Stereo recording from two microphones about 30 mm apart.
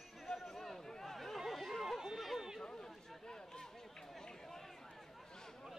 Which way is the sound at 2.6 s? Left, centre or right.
Centre.